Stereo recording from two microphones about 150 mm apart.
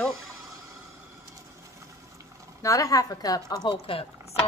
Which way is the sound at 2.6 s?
20° left (ahead or behind).